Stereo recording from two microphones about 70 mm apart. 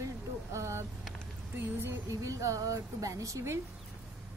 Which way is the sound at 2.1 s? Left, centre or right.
Right.